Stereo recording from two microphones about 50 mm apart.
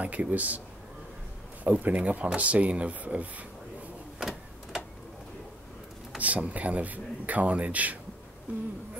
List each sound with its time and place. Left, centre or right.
0.0 s a man's voice: right
1.6 s speech: right
4.2 s printer: centre
6.1 s a man's voice: right